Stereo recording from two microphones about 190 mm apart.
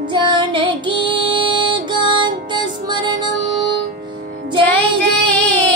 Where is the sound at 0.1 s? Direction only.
25° right (ahead or behind).